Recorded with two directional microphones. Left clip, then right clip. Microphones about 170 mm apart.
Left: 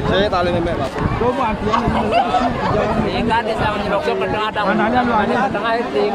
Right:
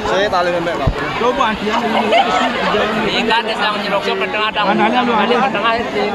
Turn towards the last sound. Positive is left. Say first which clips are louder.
# right 2 dB
turn(degrees=55)  # may be behind; listen again after turning